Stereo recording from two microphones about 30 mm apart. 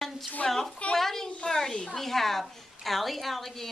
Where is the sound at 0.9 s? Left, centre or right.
Centre.